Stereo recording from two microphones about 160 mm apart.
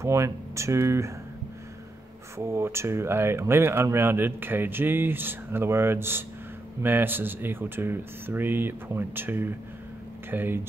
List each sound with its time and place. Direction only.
0.0 s speech: 15° right (ahead or behind)
2.3 s speech: 15° right (ahead or behind)